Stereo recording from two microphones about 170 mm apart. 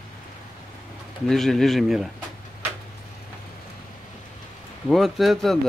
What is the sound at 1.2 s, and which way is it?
Speech, centre (ahead or behind).